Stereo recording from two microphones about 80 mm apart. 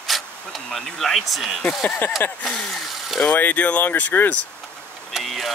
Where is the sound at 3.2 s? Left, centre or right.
Centre.